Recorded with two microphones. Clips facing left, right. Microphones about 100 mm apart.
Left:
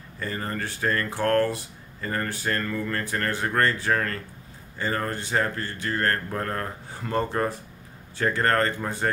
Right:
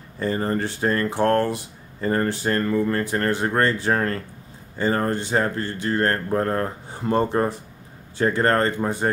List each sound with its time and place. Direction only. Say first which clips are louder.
0.2 s speech: right 8 dB; 25° right (ahead or behind)